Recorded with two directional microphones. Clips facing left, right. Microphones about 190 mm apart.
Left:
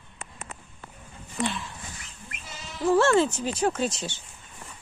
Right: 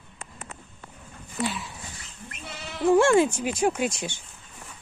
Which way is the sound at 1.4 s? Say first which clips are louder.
Even; 10° right (ahead or behind).